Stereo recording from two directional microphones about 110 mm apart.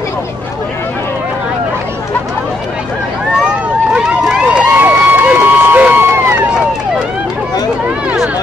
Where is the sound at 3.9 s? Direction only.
10° right (ahead or behind).